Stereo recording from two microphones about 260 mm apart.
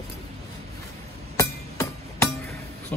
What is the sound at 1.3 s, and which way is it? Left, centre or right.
Music, centre.